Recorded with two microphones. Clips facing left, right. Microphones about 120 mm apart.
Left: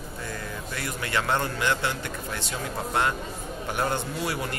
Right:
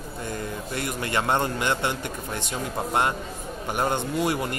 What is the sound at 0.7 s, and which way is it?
Speech, 20° right (ahead or behind).